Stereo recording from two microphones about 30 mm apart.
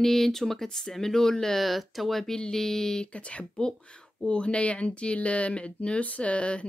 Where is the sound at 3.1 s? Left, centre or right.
Left.